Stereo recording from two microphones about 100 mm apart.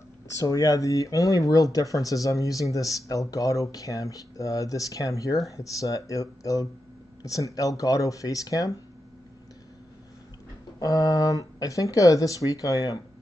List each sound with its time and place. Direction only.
0.4 s speech: 35° left (ahead or behind)
10.8 s speech: 40° left (ahead or behind)